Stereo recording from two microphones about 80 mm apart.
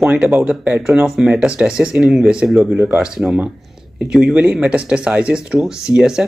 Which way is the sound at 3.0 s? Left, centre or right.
Centre.